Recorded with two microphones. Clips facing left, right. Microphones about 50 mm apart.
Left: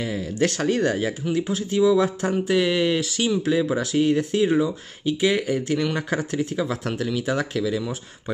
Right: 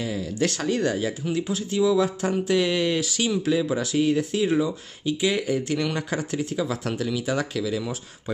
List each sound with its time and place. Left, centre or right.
0.0 s speech: left